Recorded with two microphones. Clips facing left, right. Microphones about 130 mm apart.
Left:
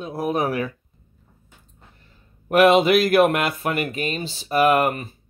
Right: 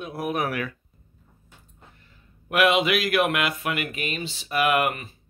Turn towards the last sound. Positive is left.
turn(degrees=35)  # may be behind; listen again after turning